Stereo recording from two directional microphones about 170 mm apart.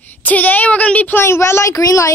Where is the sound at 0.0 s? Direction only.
10° left (ahead or behind).